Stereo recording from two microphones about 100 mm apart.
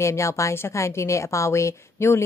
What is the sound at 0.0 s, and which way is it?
A woman's voice, 30° left (ahead or behind).